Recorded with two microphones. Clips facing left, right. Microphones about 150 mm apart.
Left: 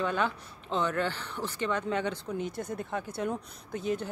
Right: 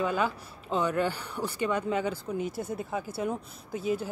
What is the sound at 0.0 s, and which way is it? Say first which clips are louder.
Speech: right 1 dB; 5° right (ahead or behind).